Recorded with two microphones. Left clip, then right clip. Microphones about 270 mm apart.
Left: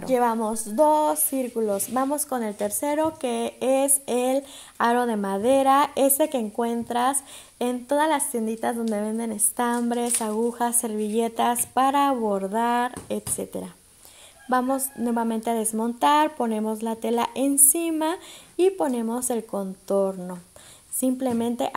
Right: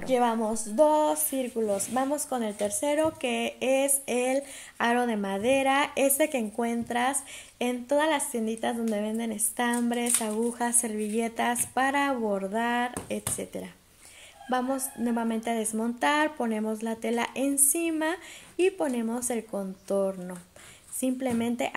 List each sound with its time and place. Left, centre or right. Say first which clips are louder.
0.0 s speech: left 3 dB; left